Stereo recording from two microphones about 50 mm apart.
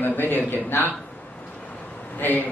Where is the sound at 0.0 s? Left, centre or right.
Left.